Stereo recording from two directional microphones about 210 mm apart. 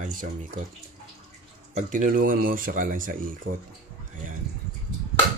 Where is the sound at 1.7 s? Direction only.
35° right (ahead or behind).